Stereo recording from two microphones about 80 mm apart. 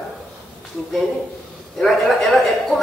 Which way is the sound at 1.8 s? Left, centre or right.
Centre.